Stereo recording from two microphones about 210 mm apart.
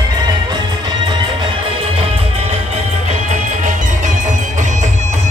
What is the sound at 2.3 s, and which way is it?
Music, 30° right (ahead or behind).